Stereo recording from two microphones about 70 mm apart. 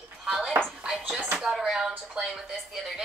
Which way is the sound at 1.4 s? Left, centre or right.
Centre.